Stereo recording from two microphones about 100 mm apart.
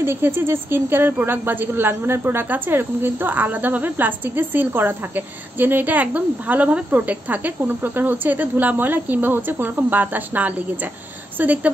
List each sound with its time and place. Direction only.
0.0 s a woman's voice: 25° right (ahead or behind)